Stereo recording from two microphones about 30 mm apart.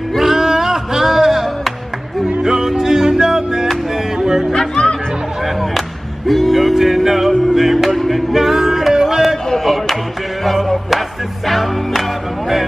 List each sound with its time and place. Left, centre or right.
0.2 s music: centre
4.5 s music: left
5.6 s music: centre
10.4 s music: centre